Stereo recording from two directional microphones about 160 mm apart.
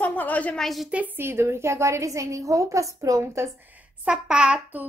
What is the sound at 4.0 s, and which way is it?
Speech, 5° right (ahead or behind).